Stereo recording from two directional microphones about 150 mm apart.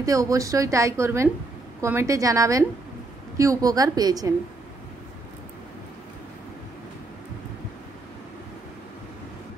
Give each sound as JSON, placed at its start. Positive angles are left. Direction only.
{"t": 0.0, "sound": "a woman's voice", "side_deg": -20}